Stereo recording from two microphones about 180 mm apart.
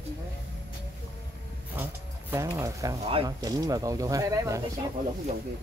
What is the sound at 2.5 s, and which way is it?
Speech, 20° right (ahead or behind).